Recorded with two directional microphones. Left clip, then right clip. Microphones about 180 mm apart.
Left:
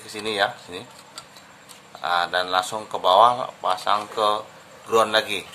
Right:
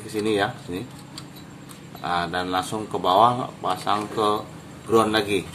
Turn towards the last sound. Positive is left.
turn(degrees=25)  # may be behind; listen again after turning